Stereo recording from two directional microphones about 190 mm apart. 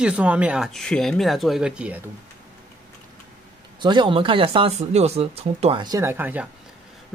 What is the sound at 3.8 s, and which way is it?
Speech, 25° right (ahead or behind).